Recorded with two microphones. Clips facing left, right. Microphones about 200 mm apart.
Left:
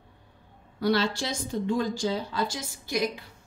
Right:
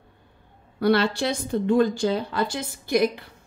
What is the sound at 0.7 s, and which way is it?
A woman's voice, 60° right (ahead or behind).